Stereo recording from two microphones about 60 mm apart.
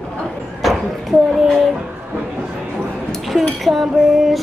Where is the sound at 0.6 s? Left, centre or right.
Centre.